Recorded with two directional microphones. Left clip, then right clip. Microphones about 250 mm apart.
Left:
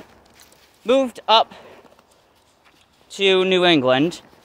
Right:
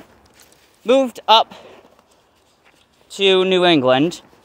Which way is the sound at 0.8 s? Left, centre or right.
Centre.